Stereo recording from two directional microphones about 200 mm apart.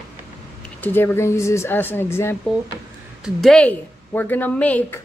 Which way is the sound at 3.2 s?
Centre (ahead or behind).